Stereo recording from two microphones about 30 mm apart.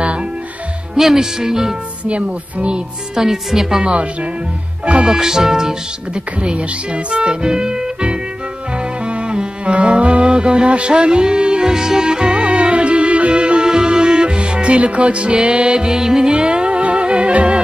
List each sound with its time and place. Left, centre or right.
0.9 s speech: centre
2.0 s speech: right
3.2 s speech: centre
3.8 s speech: right
5.0 s speech: centre
6.1 s speech: right
7.4 s speech: right
9.0 s music: right
11.7 s speech: centre
12.0 s music: right
12.4 s music: right
16.3 s music: right